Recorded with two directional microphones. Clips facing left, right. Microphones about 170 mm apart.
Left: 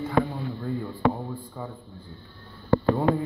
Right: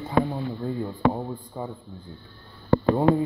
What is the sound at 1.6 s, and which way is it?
Speech, 25° right (ahead or behind).